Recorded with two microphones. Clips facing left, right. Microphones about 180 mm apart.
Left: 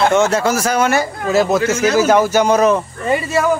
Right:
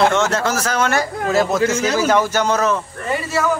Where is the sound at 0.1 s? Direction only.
10° left (ahead or behind).